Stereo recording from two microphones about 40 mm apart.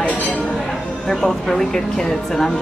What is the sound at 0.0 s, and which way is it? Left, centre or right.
Chink, left.